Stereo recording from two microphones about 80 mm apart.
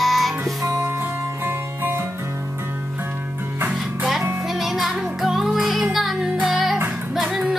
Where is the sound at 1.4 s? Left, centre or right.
Right.